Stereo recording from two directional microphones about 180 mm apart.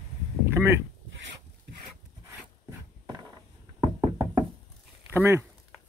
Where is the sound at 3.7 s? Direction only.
20° right (ahead or behind).